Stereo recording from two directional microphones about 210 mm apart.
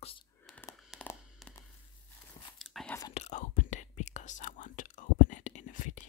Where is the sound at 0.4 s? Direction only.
10° left (ahead or behind).